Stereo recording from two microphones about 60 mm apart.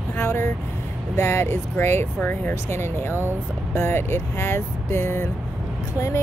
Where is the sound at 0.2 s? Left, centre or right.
Left.